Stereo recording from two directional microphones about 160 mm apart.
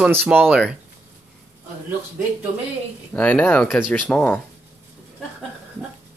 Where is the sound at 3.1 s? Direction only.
10° left (ahead or behind).